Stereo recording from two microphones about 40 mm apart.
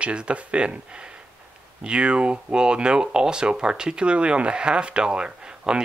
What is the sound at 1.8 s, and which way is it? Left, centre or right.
Speech, right.